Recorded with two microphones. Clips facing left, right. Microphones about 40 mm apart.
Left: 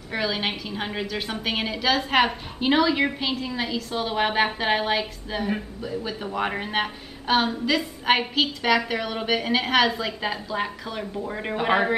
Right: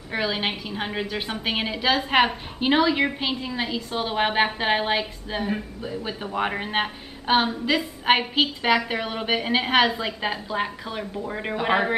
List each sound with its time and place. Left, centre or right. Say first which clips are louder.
0.1 s a woman's voice: right 1 dB; centre
6.2 s a woman's voice: right 2 dB; centre